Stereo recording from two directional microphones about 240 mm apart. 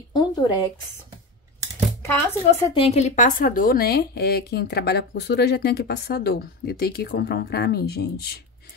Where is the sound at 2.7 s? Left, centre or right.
Left.